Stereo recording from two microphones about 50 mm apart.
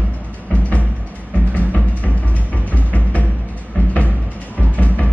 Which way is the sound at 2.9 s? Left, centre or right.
Left.